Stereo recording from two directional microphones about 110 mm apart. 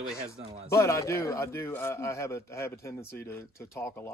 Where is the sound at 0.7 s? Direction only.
30° left (ahead or behind).